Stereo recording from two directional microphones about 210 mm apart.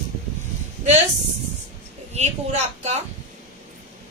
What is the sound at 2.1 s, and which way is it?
Speech, 30° right (ahead or behind).